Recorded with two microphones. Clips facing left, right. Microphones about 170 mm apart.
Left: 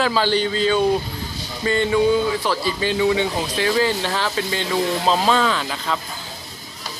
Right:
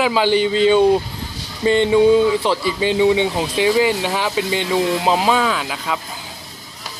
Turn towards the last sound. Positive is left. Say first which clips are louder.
# right 1 dB
turn(degrees=-5)  # may be behind; listen again after turning